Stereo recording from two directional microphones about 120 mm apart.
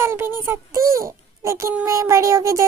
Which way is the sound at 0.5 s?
25° right (ahead or behind).